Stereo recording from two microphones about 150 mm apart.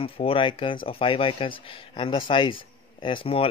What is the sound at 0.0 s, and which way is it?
Speech, 40° left (ahead or behind).